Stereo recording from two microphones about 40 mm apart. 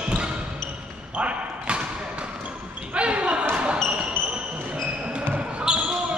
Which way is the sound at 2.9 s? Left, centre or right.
Right.